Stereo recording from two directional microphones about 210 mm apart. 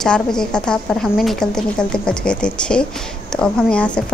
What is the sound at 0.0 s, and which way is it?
A woman's voice, 5° left (ahead or behind).